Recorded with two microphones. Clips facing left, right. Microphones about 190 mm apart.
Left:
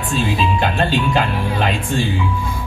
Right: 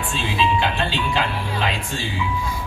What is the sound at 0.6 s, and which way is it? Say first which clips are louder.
Speech: left 5 dB; 50° left (ahead or behind).